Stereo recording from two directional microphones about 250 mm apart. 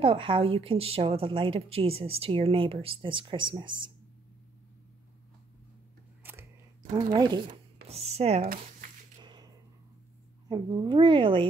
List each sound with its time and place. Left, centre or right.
0.0 s a woman's voice: right
7.2 s a woman's voice: centre
9.2 s a sound: centre
10.5 s a woman's voice: centre